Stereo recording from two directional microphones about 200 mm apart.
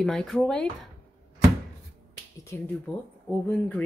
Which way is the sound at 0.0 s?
Centre (ahead or behind).